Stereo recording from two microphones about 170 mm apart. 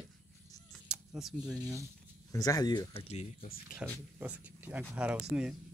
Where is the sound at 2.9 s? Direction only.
35° left (ahead or behind).